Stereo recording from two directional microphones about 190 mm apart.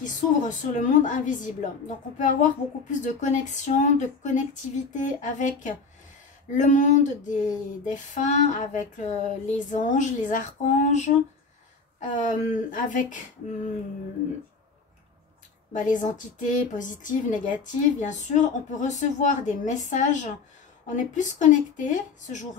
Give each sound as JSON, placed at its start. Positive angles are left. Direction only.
{"t": 0.0, "sound": "female singing", "side_deg": 40}
{"t": 12.1, "sound": "speech", "side_deg": 40}
{"t": 15.7, "sound": "female singing", "side_deg": 40}